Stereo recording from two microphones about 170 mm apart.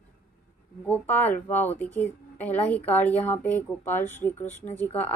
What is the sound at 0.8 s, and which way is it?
Speech, 10° left (ahead or behind).